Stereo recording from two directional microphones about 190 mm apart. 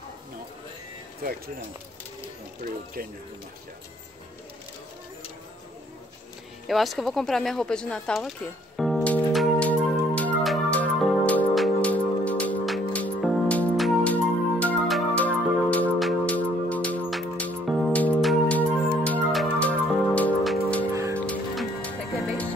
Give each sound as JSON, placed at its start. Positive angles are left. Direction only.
{"t": 2.6, "sound": "speech", "side_deg": -50}
{"t": 6.7, "sound": "speech", "side_deg": 0}
{"t": 8.7, "sound": "music", "side_deg": 0}
{"t": 20.9, "sound": "music", "side_deg": -15}
{"t": 21.3, "sound": "music", "side_deg": 5}